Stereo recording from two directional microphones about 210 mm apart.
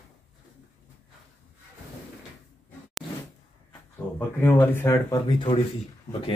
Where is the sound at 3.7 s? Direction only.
10° left (ahead or behind).